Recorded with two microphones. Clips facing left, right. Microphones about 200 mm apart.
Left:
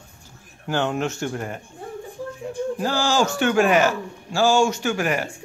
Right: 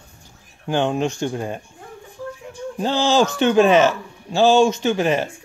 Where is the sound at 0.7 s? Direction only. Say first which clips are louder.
Right 3 dB; 15° right (ahead or behind).